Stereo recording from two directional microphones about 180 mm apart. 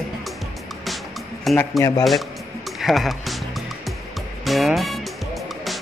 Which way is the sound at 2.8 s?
Centre (ahead or behind).